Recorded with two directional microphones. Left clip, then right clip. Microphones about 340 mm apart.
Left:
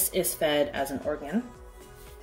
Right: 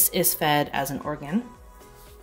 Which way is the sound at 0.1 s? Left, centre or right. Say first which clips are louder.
Right 3 dB; right.